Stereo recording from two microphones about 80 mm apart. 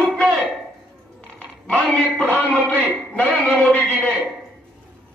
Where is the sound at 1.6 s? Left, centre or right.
Centre.